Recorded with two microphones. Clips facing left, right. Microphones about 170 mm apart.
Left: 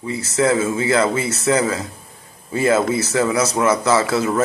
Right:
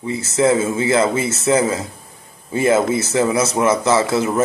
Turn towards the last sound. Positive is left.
turn(degrees=-25)  # may be behind; listen again after turning